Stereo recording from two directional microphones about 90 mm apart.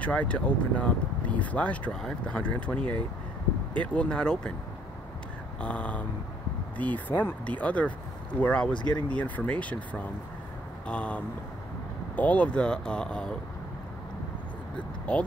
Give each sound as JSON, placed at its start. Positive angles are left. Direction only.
{"t": 0.0, "sound": "speech", "side_deg": 15}
{"t": 5.6, "sound": "speech", "side_deg": 15}
{"t": 15.1, "sound": "speech", "side_deg": 10}